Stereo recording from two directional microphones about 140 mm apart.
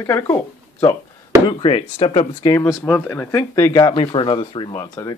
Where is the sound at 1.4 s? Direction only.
45° left (ahead or behind).